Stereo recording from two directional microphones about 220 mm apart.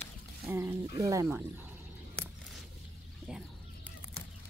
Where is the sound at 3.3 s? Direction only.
5° right (ahead or behind).